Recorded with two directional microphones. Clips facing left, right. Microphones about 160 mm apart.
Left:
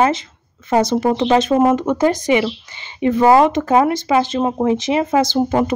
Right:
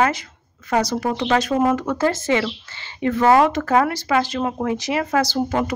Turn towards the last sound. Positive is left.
turn(degrees=20)  # may be behind; listen again after turning